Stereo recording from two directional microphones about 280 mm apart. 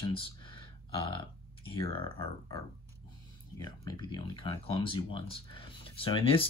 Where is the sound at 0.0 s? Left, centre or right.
Centre.